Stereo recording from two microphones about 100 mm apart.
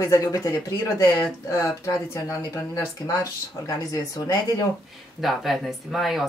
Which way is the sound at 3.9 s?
35° left (ahead or behind).